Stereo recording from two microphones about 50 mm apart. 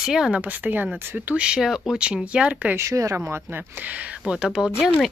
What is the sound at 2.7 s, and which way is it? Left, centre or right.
Speech, right.